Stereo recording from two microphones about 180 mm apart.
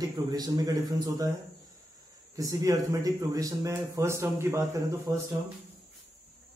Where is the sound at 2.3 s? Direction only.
20° right (ahead or behind).